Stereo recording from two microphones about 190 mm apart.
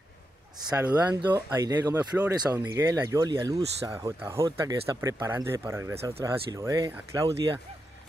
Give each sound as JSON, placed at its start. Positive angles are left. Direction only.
{"t": 0.6, "sound": "speech", "side_deg": -20}
{"t": 2.0, "sound": "speech", "side_deg": -10}
{"t": 3.9, "sound": "speech", "side_deg": -10}